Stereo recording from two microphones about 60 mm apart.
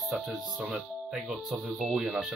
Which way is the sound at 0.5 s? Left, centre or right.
Right.